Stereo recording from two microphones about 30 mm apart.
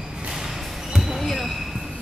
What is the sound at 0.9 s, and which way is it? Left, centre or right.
Basketball bounce, centre.